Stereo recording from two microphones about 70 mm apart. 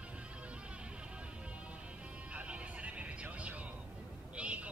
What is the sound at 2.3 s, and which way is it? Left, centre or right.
Vehicle, centre.